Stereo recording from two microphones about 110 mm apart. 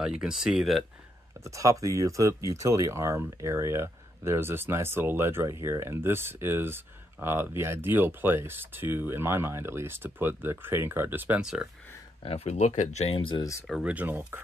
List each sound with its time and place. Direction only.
0.0 s speech: 5° right (ahead or behind)
1.4 s speech: 30° right (ahead or behind)
12.2 s speech: 65° left (ahead or behind)
13.4 s speech: 25° left (ahead or behind)
13.8 s speech: 15° right (ahead or behind)